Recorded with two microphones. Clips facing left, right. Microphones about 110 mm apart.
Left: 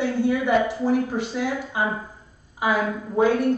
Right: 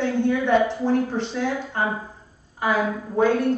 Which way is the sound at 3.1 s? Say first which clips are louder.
Even; 10° left (ahead or behind).